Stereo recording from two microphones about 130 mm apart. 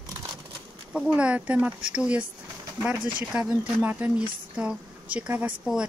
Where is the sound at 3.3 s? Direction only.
5° right (ahead or behind).